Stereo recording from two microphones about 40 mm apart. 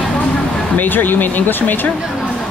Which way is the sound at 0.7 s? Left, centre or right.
Left.